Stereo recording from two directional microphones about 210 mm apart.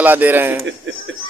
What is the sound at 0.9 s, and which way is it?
Speech, 65° right (ahead or behind).